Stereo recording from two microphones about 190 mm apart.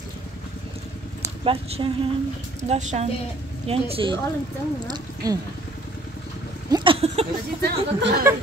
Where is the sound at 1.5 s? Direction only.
30° right (ahead or behind).